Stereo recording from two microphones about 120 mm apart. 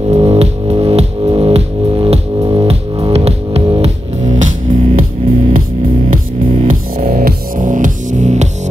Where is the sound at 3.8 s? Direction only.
75° right (ahead or behind).